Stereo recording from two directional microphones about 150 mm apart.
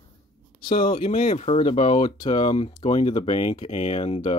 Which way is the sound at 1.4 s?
45° left (ahead or behind).